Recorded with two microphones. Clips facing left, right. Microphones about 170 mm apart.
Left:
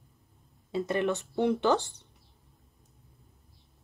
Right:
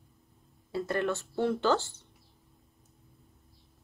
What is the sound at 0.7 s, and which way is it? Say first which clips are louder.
Speech: left 2 dB; 20° left (ahead or behind).